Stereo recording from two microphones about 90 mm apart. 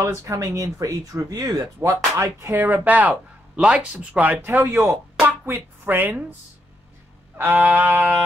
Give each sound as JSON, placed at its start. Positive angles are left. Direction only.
{"t": 0.0, "sound": "speech", "side_deg": -35}
{"t": 2.5, "sound": "speech", "side_deg": -20}
{"t": 7.3, "sound": "music", "side_deg": -20}